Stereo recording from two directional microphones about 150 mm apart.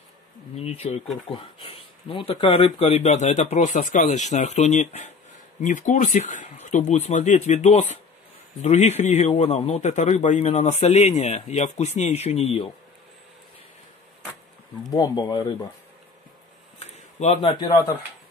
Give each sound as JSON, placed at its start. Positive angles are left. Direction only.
{"t": 0.6, "sound": "a man's voice", "side_deg": 45}
{"t": 14.9, "sound": "speech", "side_deg": 25}
{"t": 16.8, "sound": "a sound", "side_deg": 45}